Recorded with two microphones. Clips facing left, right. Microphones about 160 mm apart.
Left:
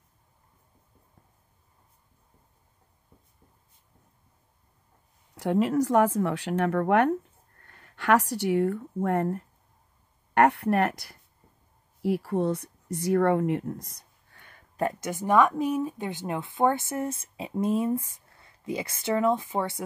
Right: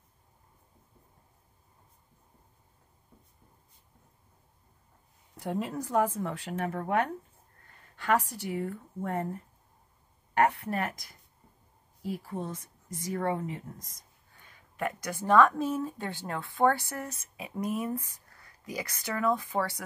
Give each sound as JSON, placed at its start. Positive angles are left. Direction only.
{"t": 5.4, "sound": "speech", "side_deg": 90}
{"t": 14.8, "sound": "a woman's voice", "side_deg": 25}